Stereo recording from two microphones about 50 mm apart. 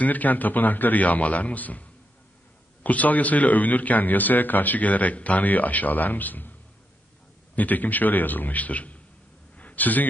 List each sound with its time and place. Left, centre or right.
0.0 s a man's voice: left
7.5 s a man's voice: left
9.6 s a sound: left